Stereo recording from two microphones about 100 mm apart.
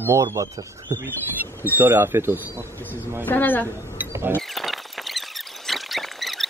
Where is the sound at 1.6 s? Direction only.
20° right (ahead or behind).